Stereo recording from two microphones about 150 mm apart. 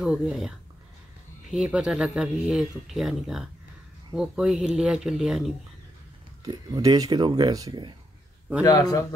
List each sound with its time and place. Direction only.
0.0 s speech: 5° right (ahead or behind)
6.4 s speech: 25° right (ahead or behind)
8.6 s a man's voice: 25° left (ahead or behind)